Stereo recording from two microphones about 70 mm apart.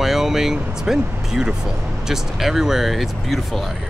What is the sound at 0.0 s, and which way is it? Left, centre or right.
Speech, centre.